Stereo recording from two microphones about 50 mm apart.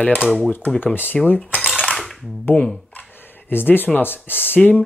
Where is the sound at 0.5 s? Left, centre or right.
Left.